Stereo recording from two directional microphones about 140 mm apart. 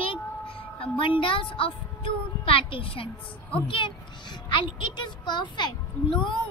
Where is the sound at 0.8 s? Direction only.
40° left (ahead or behind).